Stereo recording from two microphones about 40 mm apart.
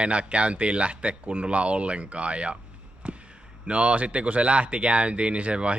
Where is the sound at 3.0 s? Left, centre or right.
Right.